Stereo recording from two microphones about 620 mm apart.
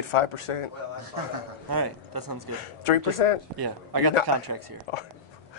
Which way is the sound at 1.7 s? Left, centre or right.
Right.